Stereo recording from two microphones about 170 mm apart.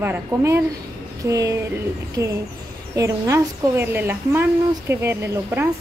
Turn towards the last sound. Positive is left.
turn(degrees=-15)  # may be behind; listen again after turning